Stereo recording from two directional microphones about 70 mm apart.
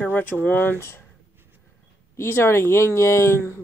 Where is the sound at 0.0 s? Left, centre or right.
Left.